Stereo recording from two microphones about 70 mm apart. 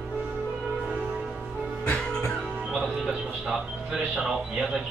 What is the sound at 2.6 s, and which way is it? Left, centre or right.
Speech, centre.